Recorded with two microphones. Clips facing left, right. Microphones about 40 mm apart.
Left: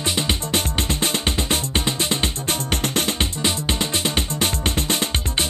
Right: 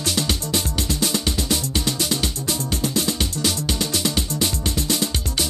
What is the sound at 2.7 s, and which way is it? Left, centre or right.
Music, left.